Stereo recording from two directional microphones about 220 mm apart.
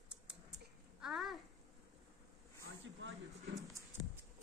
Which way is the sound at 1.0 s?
Centre (ahead or behind).